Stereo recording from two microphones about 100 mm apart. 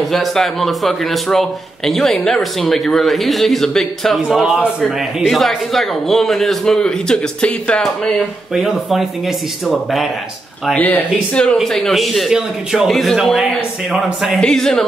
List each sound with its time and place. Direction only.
0.1 s a man's voice: centre (ahead or behind)
8.5 s a man's voice: centre (ahead or behind)
10.8 s speech: 15° left (ahead or behind)
11.5 s a man's voice: centre (ahead or behind)